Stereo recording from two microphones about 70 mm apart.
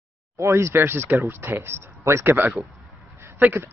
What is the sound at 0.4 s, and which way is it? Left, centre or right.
Speech, right.